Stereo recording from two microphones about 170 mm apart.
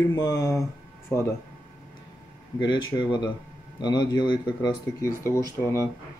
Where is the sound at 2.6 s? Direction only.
25° left (ahead or behind).